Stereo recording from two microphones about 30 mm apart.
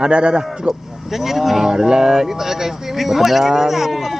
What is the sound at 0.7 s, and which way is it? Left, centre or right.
Speech, right.